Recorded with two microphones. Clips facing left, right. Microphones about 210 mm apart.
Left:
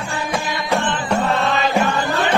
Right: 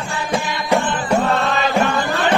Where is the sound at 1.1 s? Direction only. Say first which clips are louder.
Right 1 dB; 5° right (ahead or behind).